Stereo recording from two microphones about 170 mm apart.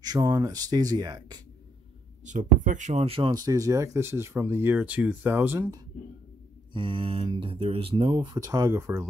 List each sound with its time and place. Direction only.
0.0 s speech: 20° right (ahead or behind)
2.2 s speech: 45° right (ahead or behind); by 5.8 s 15° right (ahead or behind)
6.7 s speech: 30° right (ahead or behind)
8.3 s speech: 20° right (ahead or behind)